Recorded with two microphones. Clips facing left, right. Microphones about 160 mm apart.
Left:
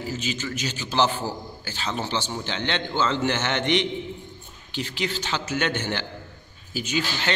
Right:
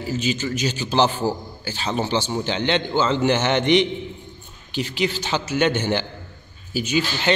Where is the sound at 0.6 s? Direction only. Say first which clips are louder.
Right 3 dB; 15° right (ahead or behind).